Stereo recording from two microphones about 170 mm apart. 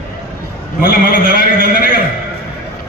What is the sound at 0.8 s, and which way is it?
A man's voice, 60° left (ahead or behind).